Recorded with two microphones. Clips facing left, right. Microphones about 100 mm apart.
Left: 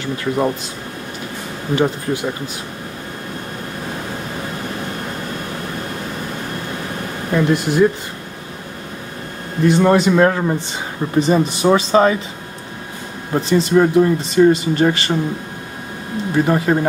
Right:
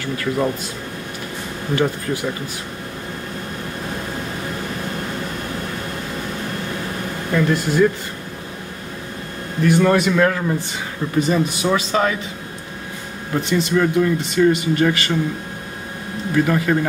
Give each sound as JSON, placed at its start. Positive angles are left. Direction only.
{"t": 0.0, "sound": "speech", "side_deg": 25}
{"t": 1.8, "sound": "speech", "side_deg": 20}
{"t": 7.3, "sound": "speech", "side_deg": 20}
{"t": 9.6, "sound": "speech", "side_deg": 25}
{"t": 13.3, "sound": "speech", "side_deg": 30}
{"t": 16.3, "sound": "speech", "side_deg": 25}